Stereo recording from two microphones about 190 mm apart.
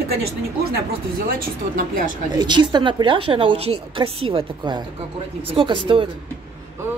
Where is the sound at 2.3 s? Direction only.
25° right (ahead or behind).